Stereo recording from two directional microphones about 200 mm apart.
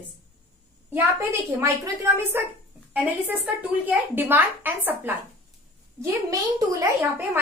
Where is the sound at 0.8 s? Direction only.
15° right (ahead or behind).